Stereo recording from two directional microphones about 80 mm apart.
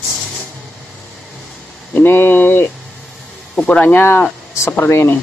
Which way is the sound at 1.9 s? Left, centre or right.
Left.